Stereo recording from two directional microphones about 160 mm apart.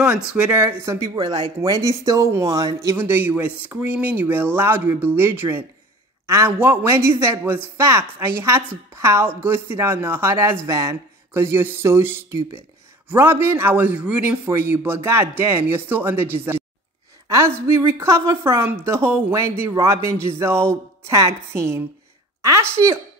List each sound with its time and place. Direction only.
0.0 s a woman's voice: 5° right (ahead or behind)